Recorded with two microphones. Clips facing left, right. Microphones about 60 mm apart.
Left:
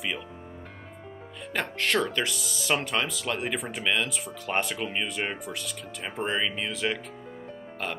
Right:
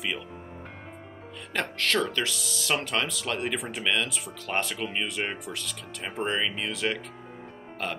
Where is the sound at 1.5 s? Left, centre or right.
Centre.